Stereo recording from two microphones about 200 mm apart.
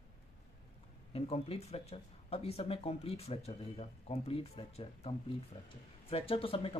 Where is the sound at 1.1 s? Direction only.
30° left (ahead or behind).